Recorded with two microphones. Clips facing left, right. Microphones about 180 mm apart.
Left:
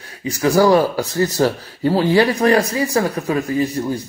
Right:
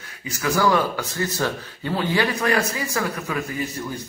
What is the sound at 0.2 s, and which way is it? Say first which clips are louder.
Speech: left 7 dB; 35° left (ahead or behind).